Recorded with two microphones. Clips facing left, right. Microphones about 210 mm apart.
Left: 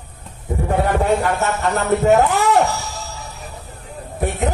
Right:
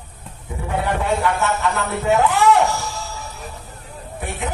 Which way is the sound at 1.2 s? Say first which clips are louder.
Left 1 dB; 45° left (ahead or behind).